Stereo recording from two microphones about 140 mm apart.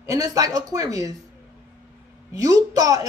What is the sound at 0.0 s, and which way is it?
Speech, 25° right (ahead or behind).